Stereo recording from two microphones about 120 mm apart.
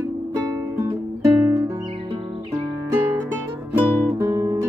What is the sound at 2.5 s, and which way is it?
Music, 20° right (ahead or behind).